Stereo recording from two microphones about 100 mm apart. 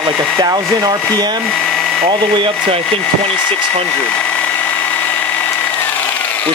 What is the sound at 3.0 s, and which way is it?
Speech, 15° left (ahead or behind).